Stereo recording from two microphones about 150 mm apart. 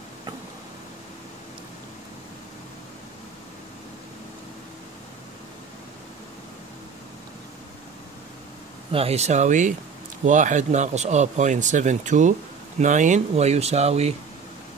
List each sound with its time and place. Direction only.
8.9 s speech: 45° right (ahead or behind)